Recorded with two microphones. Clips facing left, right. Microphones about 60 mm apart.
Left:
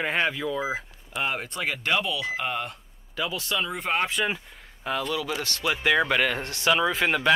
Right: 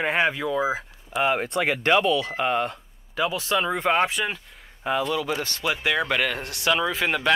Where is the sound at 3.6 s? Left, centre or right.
Right.